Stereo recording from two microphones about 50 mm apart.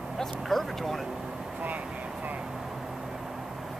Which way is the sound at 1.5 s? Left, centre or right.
Right.